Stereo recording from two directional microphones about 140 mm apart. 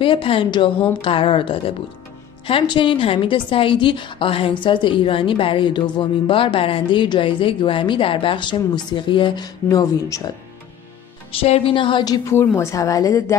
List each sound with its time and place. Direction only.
0.0 s a woman's voice: 40° left (ahead or behind)
11.4 s a woman's voice: 45° left (ahead or behind); by 13.2 s 25° left (ahead or behind)